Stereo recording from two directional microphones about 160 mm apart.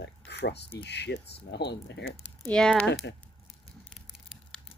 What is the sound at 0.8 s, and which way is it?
Speech, 90° left.